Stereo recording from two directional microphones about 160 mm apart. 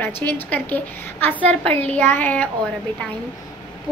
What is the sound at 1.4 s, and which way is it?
Speech, 35° right (ahead or behind).